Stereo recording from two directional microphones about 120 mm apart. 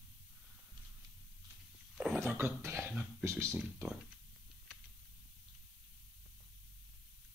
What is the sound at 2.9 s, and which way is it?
Speech, 10° right (ahead or behind).